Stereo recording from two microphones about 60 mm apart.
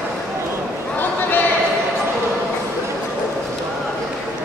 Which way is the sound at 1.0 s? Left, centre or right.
Left.